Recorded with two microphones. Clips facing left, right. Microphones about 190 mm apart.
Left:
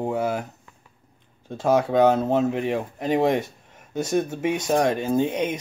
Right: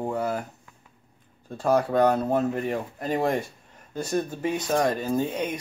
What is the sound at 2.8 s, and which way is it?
Speech, 20° left (ahead or behind).